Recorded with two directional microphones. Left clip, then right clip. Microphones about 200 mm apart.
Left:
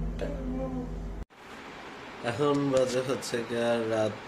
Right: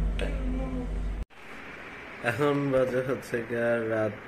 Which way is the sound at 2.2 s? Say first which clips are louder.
Right 1 dB; 5° left (ahead or behind).